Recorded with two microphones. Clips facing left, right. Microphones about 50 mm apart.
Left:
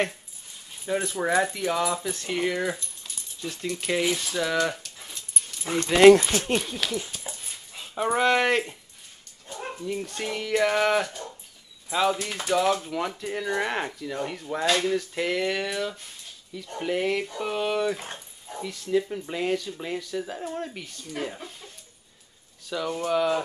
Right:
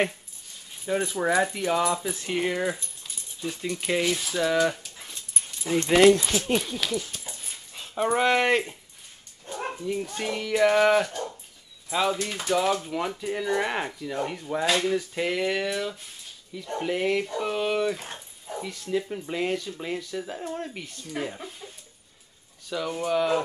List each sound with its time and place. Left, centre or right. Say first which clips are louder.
0.8 s speech: right 1 dB; centre
5.7 s speech: right 2 dB; left
6.5 s speech: right 1 dB; centre
7.1 s dog: left 1 dB; centre
9.8 s speech: right 1 dB; centre
22.7 s speech: even; centre